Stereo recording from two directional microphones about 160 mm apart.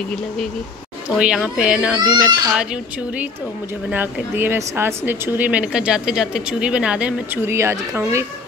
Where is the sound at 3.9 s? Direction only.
10° right (ahead or behind).